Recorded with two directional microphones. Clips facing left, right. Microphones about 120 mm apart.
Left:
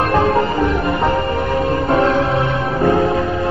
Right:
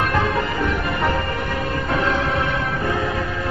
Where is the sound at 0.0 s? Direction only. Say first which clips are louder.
Left 6 dB; 40° left (ahead or behind).